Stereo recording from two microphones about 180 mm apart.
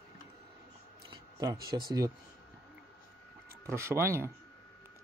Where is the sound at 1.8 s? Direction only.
20° right (ahead or behind).